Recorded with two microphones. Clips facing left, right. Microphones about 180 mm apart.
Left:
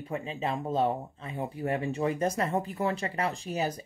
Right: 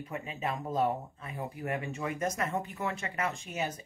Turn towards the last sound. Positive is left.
turn(degrees=35)  # may be behind; listen again after turning